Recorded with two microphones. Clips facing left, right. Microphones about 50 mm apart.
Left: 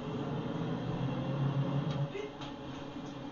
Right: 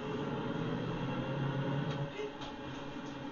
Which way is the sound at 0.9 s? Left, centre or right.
Right.